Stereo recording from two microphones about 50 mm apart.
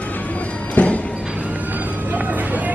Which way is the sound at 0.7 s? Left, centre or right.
Left.